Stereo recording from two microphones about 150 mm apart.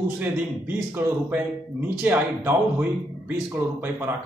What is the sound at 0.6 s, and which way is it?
Speech, 15° right (ahead or behind).